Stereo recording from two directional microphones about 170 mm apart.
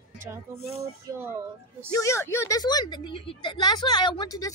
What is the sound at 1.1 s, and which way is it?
Speech, 20° right (ahead or behind).